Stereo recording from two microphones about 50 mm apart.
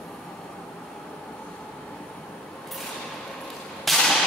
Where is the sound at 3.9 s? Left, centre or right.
Centre.